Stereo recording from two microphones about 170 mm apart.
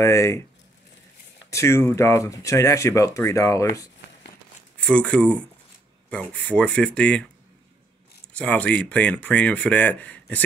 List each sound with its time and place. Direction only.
0.0 s speech: 15° left (ahead or behind)
1.5 s speech: 15° left (ahead or behind)
4.7 s speech: 5° left (ahead or behind)
8.3 s speech: 10° left (ahead or behind)